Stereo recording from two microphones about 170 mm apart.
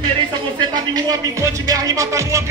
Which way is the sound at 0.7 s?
20° right (ahead or behind).